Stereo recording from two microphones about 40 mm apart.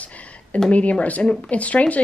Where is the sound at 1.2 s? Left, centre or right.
Centre.